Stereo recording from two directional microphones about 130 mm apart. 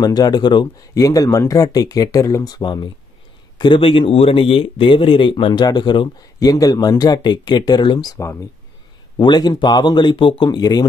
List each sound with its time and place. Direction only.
0.0 s speech: 30° left (ahead or behind)